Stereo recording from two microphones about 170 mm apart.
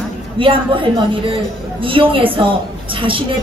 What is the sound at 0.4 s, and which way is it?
Speech, 30° right (ahead or behind).